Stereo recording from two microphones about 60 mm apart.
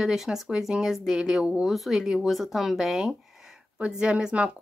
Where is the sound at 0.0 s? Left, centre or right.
Centre.